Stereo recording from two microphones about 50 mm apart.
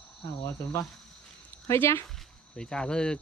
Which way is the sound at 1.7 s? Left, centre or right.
Left.